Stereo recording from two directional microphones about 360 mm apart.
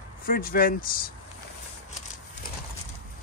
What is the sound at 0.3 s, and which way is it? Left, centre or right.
Speech, left.